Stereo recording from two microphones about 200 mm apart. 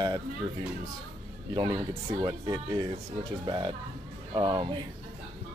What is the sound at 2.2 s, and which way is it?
Speech, 20° right (ahead or behind).